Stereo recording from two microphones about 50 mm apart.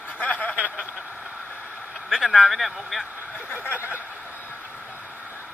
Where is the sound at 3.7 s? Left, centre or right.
Right.